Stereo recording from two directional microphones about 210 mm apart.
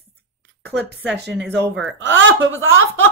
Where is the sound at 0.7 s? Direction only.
55° right (ahead or behind).